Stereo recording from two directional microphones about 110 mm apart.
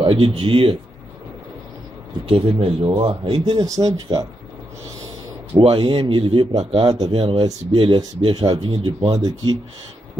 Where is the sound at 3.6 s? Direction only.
30° right (ahead or behind).